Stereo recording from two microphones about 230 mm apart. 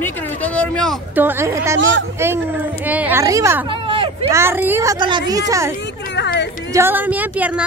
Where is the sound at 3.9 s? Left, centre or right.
Right.